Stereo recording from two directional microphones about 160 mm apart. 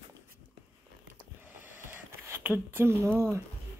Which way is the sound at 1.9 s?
15° right (ahead or behind).